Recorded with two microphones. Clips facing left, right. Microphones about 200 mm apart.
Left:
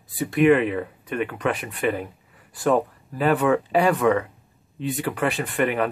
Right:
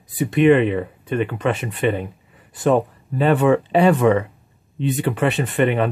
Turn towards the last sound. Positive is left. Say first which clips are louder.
# right 4 dB
turn(degrees=-25)  # may be behind; listen again after turning